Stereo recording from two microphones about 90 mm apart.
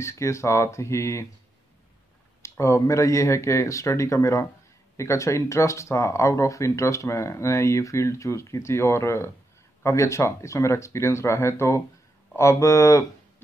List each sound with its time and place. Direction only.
0.0 s speech: 30° left (ahead or behind)
2.4 s speech: 30° left (ahead or behind)